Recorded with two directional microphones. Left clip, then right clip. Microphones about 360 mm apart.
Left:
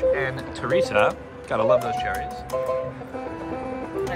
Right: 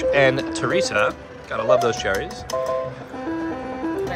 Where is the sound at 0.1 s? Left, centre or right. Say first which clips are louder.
Right 7 dB; centre.